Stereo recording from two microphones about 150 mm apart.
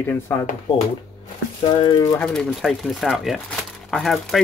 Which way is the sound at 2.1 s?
5° left (ahead or behind).